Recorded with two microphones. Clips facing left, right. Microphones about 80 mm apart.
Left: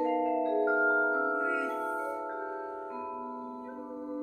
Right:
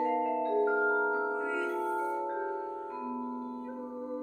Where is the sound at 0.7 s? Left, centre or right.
Centre.